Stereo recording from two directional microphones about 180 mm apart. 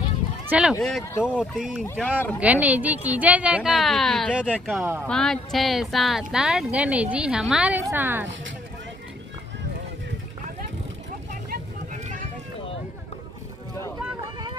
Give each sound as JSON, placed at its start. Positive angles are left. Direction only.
{"t": 0.5, "sound": "speech", "side_deg": -5}
{"t": 2.4, "sound": "a woman's voice", "side_deg": -10}
{"t": 5.0, "sound": "speech", "side_deg": 5}
{"t": 11.5, "sound": "vehicle", "side_deg": -45}